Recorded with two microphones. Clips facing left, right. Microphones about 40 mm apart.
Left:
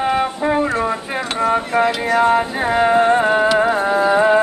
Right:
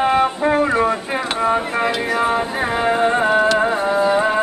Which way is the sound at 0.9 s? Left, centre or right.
Centre.